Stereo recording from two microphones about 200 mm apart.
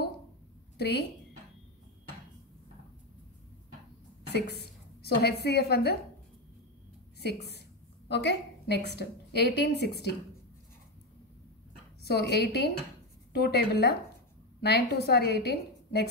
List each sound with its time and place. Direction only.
4.3 s a woman's voice: 55° left (ahead or behind)
8.1 s a woman's voice: 55° left (ahead or behind)
12.0 s a woman's voice: 55° left (ahead or behind)